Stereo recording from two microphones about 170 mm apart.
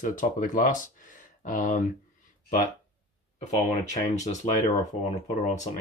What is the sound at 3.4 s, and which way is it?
Speech, 40° left (ahead or behind).